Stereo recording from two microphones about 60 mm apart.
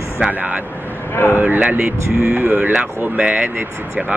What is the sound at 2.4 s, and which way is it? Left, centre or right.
Speech, right.